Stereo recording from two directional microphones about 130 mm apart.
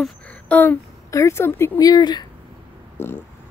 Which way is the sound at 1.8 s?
30° left (ahead or behind).